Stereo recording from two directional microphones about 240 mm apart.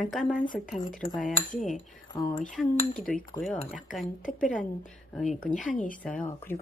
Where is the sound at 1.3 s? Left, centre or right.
Left.